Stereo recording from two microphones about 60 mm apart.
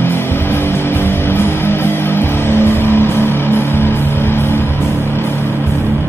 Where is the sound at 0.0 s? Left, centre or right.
Left.